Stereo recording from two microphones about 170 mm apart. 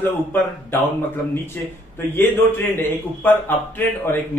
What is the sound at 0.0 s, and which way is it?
Speech, 10° left (ahead or behind).